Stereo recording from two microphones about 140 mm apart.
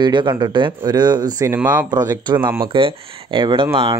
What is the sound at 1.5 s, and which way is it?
Speech, 15° right (ahead or behind).